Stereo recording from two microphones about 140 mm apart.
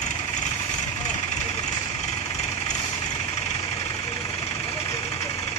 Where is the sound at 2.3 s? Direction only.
55° left (ahead or behind).